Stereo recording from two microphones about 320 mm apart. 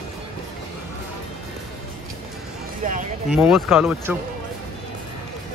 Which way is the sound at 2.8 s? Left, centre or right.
Right.